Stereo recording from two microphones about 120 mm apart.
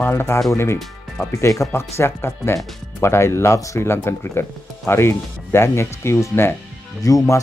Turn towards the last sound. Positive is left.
turn(degrees=30)  # may be behind; listen again after turning